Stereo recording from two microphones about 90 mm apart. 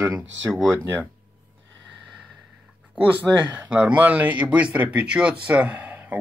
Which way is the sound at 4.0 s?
15° right (ahead or behind).